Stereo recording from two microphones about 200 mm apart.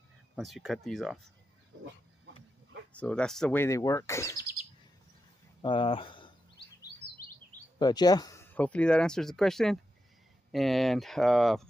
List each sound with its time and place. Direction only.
0.4 s speech: centre (ahead or behind)
2.9 s speech: 5° left (ahead or behind)
5.6 s speech: 25° left (ahead or behind)
7.8 s speech: 20° left (ahead or behind); by 11.6 s centre (ahead or behind)